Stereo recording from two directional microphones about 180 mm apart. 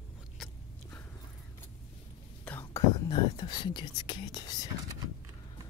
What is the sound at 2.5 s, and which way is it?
Whispering, 10° left (ahead or behind).